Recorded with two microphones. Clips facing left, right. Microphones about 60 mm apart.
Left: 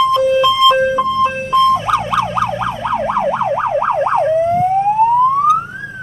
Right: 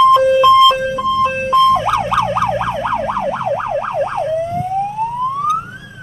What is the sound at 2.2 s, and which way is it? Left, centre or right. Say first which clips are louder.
Emergency vehicle: right 1 dB; right.